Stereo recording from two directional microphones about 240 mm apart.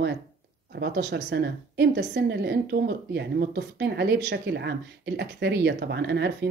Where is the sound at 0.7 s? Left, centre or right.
Right.